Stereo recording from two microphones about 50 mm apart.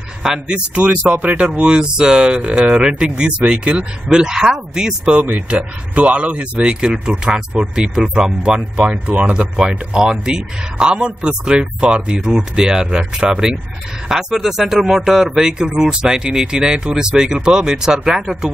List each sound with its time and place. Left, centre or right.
0.2 s speech: centre
5.3 s speech: right; by 18.3 s centre